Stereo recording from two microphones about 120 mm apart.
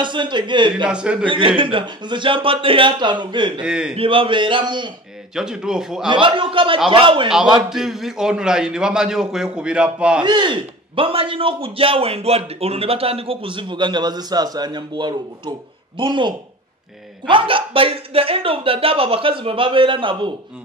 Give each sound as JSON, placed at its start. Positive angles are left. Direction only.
{"t": 0.0, "sound": "speech", "side_deg": -40}
{"t": 0.8, "sound": "a man's voice", "side_deg": -10}
{"t": 1.2, "sound": "a man's voice", "side_deg": -45}
{"t": 3.6, "sound": "a man's voice", "side_deg": -5}
{"t": 3.9, "sound": "a man's voice", "side_deg": -50}
{"t": 5.3, "sound": "a man's voice", "side_deg": -5}
{"t": 6.0, "sound": "a man's voice", "side_deg": -45}
{"t": 7.5, "sound": "a man's voice", "side_deg": -5}
{"t": 10.2, "sound": "a man's voice", "side_deg": -40}